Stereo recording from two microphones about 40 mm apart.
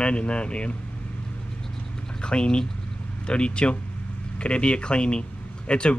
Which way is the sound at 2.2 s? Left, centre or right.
Left.